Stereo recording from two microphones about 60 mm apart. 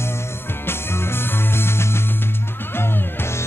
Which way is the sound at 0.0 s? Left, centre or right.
Left.